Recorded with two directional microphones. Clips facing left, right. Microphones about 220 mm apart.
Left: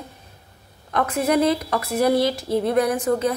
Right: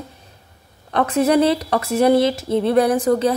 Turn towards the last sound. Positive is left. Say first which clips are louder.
# right 4 dB
turn(degrees=-35)  # may be behind; listen again after turning